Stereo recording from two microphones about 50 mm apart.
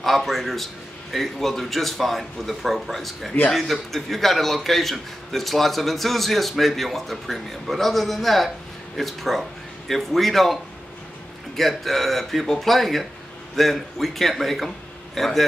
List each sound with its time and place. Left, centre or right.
0.0 s a man's voice: centre